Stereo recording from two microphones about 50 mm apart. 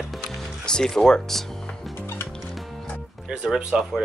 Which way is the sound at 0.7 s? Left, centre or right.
Centre.